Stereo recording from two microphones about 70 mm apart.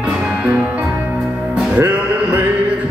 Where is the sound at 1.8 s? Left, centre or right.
Right.